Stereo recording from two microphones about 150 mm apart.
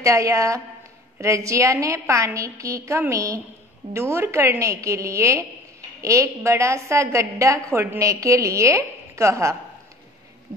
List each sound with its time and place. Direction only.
0.0 s a woman's voice: 20° right (ahead or behind)